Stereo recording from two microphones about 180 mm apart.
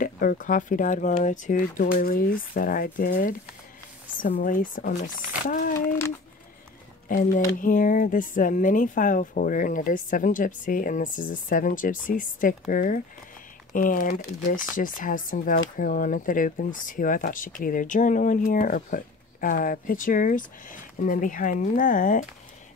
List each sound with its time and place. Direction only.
0.0 s speech: 50° left (ahead or behind)
5.8 s speech: 15° left (ahead or behind)
7.1 s speech: 50° left (ahead or behind)